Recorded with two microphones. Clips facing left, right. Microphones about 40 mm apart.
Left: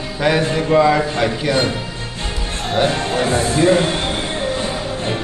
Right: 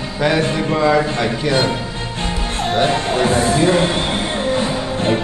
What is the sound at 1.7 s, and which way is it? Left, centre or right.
Music, right.